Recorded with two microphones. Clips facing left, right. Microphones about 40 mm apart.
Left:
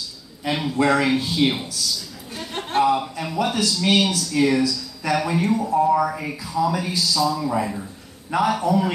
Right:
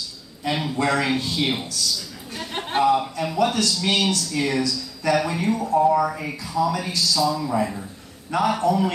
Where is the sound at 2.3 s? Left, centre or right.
Centre.